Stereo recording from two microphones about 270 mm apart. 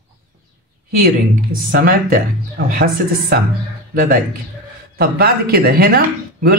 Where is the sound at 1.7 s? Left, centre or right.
Right.